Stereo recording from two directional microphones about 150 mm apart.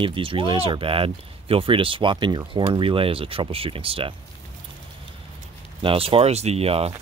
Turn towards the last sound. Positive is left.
turn(degrees=-40)  # may be behind; listen again after turning